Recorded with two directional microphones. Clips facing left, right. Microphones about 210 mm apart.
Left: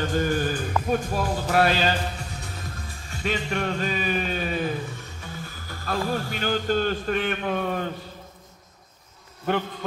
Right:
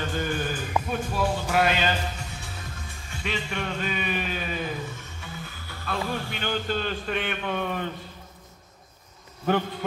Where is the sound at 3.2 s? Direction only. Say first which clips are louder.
Left 4 dB; 45° left (ahead or behind).